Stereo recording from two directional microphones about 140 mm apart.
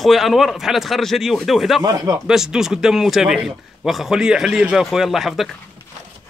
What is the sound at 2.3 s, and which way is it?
Speech, 5° right (ahead or behind).